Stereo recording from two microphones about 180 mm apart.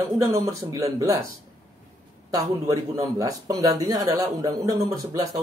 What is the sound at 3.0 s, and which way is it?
Speech, 20° right (ahead or behind).